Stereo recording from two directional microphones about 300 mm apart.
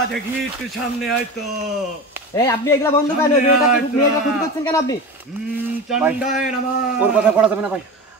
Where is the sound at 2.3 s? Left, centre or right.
Centre.